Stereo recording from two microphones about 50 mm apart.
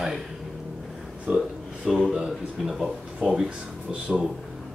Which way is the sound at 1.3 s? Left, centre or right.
Centre.